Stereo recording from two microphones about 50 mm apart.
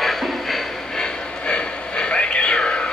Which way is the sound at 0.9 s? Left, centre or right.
Centre.